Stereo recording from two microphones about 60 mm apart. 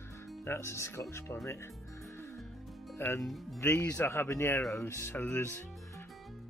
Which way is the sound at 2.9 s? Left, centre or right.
Left.